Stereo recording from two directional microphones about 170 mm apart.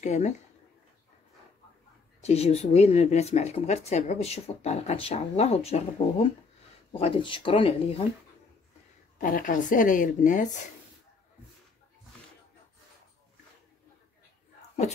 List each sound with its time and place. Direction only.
0.0 s a woman's voice: 45° left (ahead or behind)
2.2 s speech: 35° left (ahead or behind)
9.2 s a woman's voice: 50° left (ahead or behind)